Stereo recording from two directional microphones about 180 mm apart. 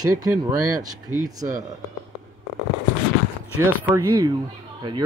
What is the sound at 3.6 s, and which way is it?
Speech, 15° right (ahead or behind).